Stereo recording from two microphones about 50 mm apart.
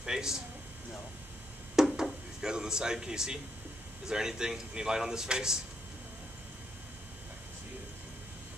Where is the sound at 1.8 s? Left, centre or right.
Centre.